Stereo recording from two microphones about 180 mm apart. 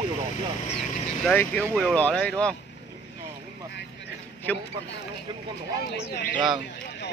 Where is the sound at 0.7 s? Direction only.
5° left (ahead or behind).